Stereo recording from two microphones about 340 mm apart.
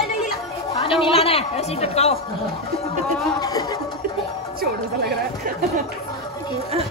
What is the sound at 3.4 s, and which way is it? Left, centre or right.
Speech, centre.